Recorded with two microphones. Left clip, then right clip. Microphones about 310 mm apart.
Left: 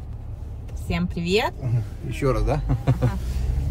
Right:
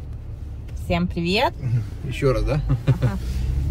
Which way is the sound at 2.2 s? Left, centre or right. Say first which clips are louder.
Right 2 dB; left.